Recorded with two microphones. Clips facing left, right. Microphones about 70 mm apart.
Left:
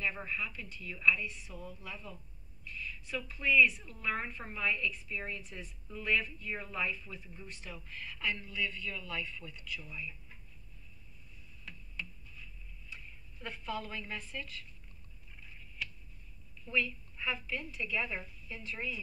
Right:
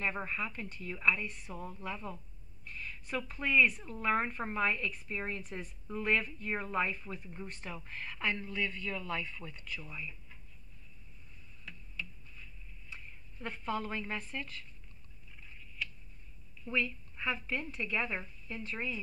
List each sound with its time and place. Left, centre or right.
0.0 s speech: right
12.9 s a woman's voice: right
16.6 s speech: right